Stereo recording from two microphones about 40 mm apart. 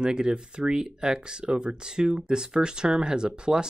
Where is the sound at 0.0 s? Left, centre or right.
Centre.